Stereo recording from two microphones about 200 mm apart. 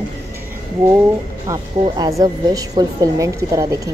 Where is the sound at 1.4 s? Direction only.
20° right (ahead or behind).